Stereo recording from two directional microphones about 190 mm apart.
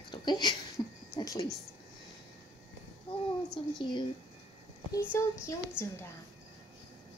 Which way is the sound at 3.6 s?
30° left (ahead or behind).